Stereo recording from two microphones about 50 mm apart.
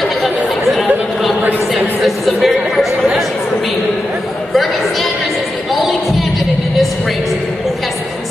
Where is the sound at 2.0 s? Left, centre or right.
Centre.